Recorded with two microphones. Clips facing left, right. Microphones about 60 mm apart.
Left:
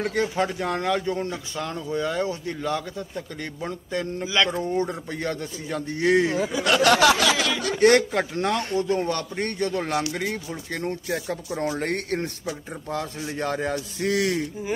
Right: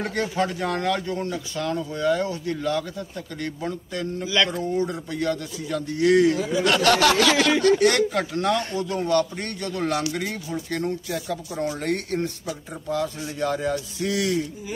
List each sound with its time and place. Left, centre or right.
0.0 s a man's voice: centre
6.5 s a sound: centre
7.8 s a man's voice: left
11.1 s a man's voice: left